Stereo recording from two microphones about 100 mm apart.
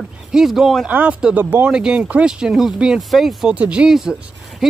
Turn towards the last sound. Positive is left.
turn(degrees=0)  # may be behind; listen again after turning